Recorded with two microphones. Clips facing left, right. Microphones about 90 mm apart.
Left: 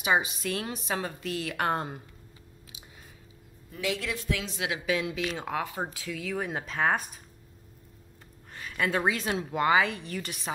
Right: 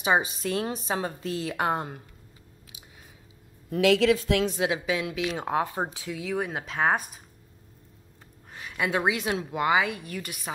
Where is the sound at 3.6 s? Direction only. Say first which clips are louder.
Right 12 dB; 90° right.